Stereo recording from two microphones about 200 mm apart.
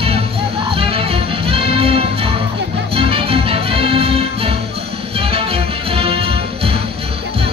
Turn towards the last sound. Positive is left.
turn(degrees=-30)  # may be behind; listen again after turning